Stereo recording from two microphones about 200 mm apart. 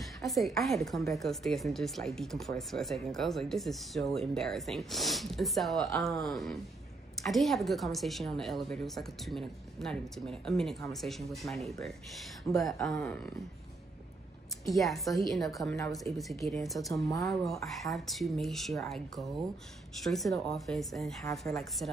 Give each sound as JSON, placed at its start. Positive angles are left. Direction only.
{"t": 0.3, "sound": "a woman's voice", "side_deg": 0}
{"t": 14.6, "sound": "a woman's voice", "side_deg": 0}